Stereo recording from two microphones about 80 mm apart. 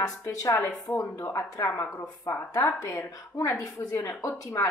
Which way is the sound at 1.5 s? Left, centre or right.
Left.